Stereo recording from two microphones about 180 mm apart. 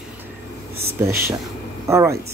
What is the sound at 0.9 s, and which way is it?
Speech, 15° right (ahead or behind).